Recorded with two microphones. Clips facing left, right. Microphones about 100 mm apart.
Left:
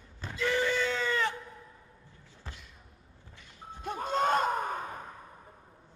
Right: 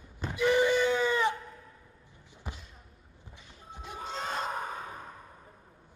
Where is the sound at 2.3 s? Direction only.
15° right (ahead or behind).